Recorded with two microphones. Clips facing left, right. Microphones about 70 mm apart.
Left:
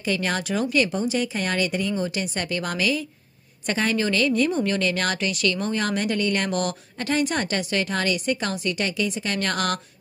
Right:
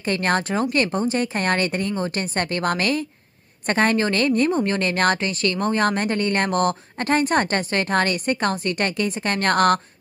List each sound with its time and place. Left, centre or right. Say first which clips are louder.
0.0 s a woman's voice: right 4 dB; right